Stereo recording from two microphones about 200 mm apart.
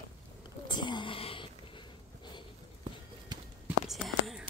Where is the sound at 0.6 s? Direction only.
20° left (ahead or behind).